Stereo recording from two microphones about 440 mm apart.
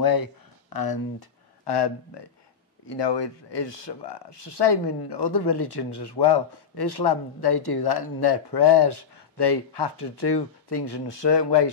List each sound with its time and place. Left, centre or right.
0.0 s speech: left